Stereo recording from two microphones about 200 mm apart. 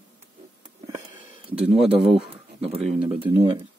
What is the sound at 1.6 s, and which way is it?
Speech, 5° right (ahead or behind).